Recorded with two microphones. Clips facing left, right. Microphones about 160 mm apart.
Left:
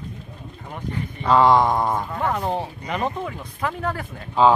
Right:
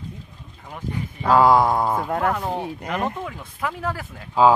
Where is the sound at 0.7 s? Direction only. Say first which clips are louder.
Even; 5° right (ahead or behind).